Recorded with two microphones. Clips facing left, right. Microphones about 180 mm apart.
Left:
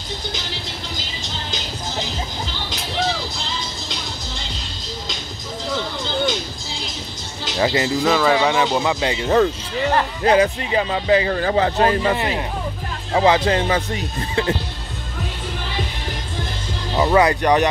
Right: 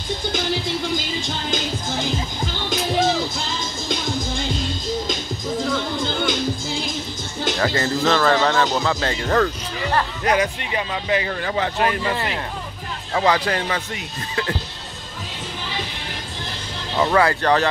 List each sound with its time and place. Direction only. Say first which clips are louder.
2.4 s music: right 5 dB; 50° right (ahead or behind)
7.5 s speech: left 4 dB; 15° left (ahead or behind)
9.9 s speech: left 4 dB; 30° left (ahead or behind)
16.9 s speech: left 2 dB; 15° left (ahead or behind)